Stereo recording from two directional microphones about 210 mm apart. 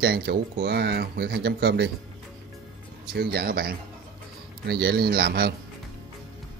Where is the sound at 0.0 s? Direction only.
50° right (ahead or behind).